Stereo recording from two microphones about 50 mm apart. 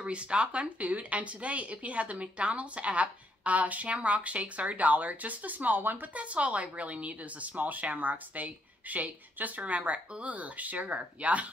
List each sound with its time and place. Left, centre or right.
0.0 s speech: right
6.1 s speech: right